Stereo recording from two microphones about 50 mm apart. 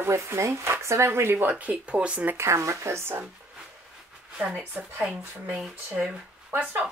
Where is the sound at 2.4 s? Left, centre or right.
Right.